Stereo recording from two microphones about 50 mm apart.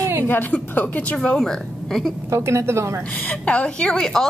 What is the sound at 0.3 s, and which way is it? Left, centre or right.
Speech, left.